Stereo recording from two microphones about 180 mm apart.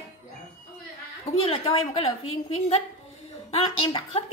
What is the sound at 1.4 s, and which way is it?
A woman's voice, 30° left (ahead or behind).